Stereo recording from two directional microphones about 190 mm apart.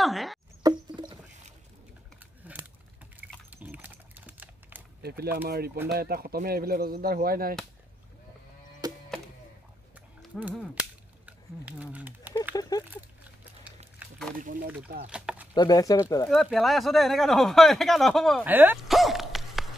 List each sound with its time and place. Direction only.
0.0 s speech: centre (ahead or behind)
0.7 s a sound: 25° right (ahead or behind)
2.4 s a sound: 10° right (ahead or behind)
3.4 s typing: 10° right (ahead or behind)
5.0 s speech: 55° right (ahead or behind)
8.8 s music: 20° right (ahead or behind)
10.4 s cap gun: 5° right (ahead or behind)
12.5 s speech: 20° left (ahead or behind)
12.9 s a sound: 10° right (ahead or behind)
15.0 s speech: 5° right (ahead or behind)
15.5 s speech: 20° left (ahead or behind)
16.3 s speech: centre (ahead or behind)
18.4 s a sound: 10° right (ahead or behind)